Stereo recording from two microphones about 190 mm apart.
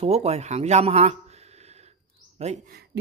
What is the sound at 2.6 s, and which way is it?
Speech, 60° right (ahead or behind).